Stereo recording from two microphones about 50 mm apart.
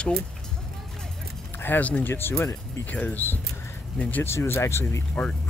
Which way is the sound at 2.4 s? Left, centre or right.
Left.